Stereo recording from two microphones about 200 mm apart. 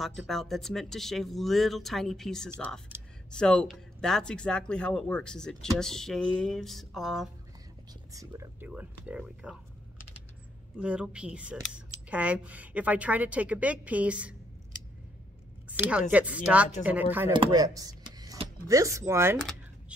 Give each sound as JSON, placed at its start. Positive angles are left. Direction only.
{"t": 0.0, "sound": "speech", "side_deg": 0}
{"t": 8.1, "sound": "speech", "side_deg": -15}
{"t": 10.8, "sound": "speech", "side_deg": -5}
{"t": 15.7, "sound": "speech", "side_deg": -5}
{"t": 17.3, "sound": "speech", "side_deg": -20}